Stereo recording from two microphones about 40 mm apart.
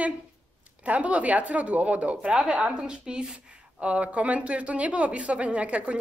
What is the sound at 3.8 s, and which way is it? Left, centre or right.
Speech, right.